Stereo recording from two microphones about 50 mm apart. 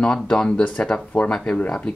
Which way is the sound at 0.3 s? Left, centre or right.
Centre.